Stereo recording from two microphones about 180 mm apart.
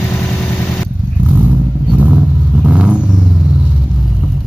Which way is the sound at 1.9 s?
5° right (ahead or behind).